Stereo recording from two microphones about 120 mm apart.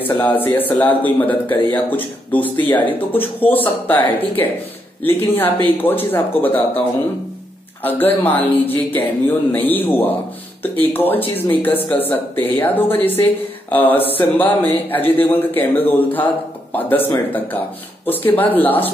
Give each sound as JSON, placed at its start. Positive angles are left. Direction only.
{"t": 0.6, "sound": "a woman's voice", "side_deg": 15}
{"t": 7.8, "sound": "a woman's voice", "side_deg": 15}